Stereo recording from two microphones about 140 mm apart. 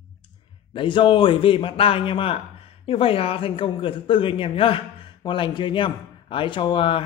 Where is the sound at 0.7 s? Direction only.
35° left (ahead or behind).